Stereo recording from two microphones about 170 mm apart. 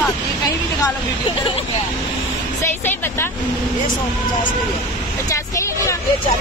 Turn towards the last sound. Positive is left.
turn(degrees=20)  # may be behind; listen again after turning